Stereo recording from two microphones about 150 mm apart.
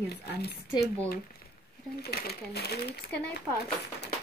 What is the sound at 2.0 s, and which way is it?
Speech, 90° left.